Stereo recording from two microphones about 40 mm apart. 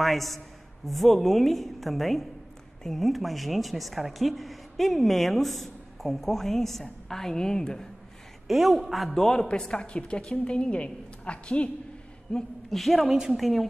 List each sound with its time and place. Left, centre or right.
0.0 s speech: centre
8.5 s a man's voice: centre; by 12.4 s left
12.7 s speech: centre
13.1 s speech: centre
13.4 s speech: centre